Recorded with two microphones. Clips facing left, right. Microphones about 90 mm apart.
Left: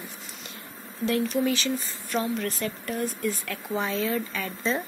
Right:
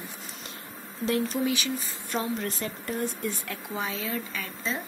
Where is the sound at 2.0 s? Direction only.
25° right (ahead or behind).